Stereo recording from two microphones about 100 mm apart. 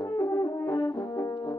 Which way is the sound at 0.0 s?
35° left (ahead or behind).